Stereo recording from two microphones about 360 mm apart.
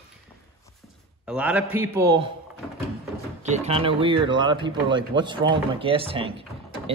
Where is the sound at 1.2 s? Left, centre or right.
Centre.